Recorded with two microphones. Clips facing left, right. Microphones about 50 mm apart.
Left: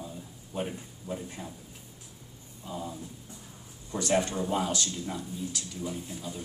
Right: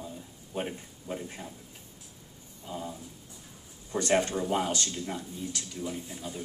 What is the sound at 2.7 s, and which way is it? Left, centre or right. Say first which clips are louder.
Speech: even; centre.